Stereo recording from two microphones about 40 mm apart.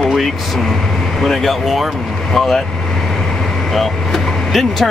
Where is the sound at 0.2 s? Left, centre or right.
Centre.